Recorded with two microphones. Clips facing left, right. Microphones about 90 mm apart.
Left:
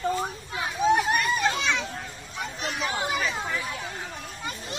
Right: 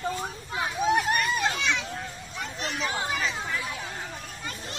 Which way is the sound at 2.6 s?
15° left (ahead or behind).